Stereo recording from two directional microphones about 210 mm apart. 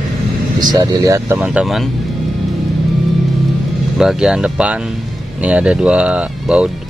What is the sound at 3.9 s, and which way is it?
Speech, centre (ahead or behind).